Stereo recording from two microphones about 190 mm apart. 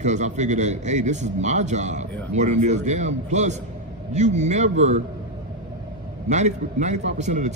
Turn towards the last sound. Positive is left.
turn(degrees=-40)  # may be behind; listen again after turning